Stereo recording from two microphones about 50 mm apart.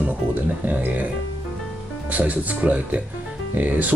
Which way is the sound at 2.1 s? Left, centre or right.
Right.